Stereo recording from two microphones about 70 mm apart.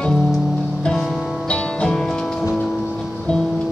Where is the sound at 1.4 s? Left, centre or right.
Centre.